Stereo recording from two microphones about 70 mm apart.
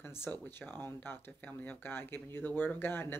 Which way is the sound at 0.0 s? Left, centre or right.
Left.